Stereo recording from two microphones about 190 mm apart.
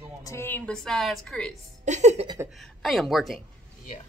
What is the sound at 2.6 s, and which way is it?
Speech, centre (ahead or behind).